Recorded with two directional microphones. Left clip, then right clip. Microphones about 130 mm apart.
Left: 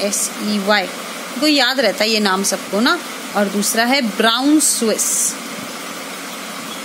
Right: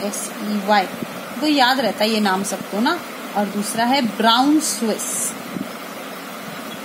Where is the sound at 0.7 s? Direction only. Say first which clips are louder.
Even; 55° left (ahead or behind).